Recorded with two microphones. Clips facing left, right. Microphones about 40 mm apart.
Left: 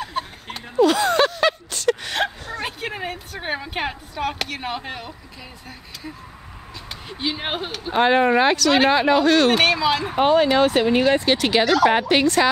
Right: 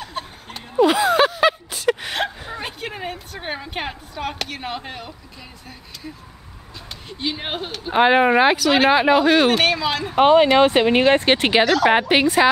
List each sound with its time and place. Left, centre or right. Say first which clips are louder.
0.0 s a sound: left 3 dB; centre
0.7 s a sound: right 1 dB; centre
2.6 s speech: left 2 dB; centre
7.1 s a man's voice: left 1 dB; centre
7.9 s speech: right 2 dB; centre
9.5 s a man's voice: left 1 dB; centre
10.1 s speech: right 5 dB; right
11.6 s speech: right 1 dB; centre